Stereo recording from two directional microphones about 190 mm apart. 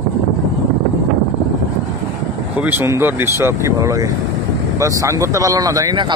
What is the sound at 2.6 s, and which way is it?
Speech, 10° right (ahead or behind).